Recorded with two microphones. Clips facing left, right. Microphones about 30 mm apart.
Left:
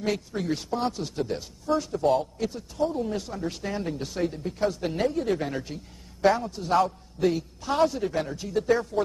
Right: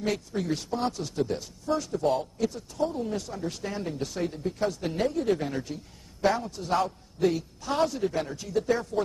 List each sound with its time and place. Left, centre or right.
0.0 s a man's voice: centre
0.9 s a man's voice: centre
2.3 s speech: centre
2.8 s a man's voice: centre